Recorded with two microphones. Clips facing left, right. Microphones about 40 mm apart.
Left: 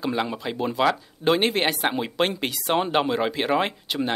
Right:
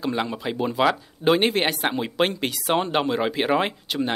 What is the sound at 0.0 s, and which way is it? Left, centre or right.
Speech, centre.